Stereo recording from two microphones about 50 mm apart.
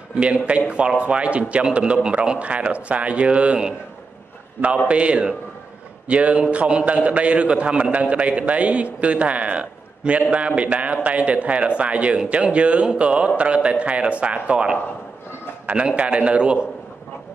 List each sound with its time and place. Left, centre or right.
0.1 s a man's voice: right
4.8 s a man's voice: right